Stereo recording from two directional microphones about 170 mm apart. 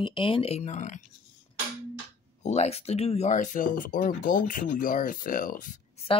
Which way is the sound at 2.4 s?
40° left (ahead or behind).